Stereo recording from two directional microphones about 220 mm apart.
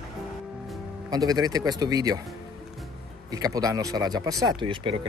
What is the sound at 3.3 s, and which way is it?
Speech, 15° right (ahead or behind).